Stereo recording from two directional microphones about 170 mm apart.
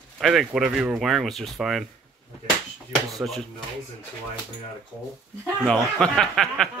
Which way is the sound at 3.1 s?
Centre (ahead or behind).